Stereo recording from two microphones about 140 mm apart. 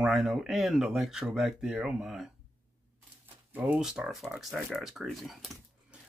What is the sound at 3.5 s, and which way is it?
Speech, 10° right (ahead or behind).